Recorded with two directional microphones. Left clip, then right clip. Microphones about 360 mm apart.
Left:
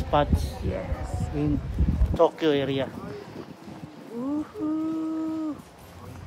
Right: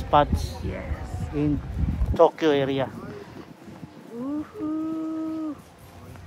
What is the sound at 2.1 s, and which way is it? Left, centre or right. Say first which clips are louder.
Speech: right 3 dB; centre.